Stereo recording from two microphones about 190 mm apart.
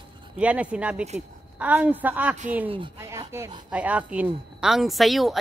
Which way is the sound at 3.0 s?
15° right (ahead or behind).